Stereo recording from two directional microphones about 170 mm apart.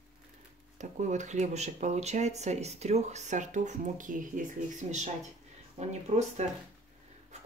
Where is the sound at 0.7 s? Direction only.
45° right (ahead or behind).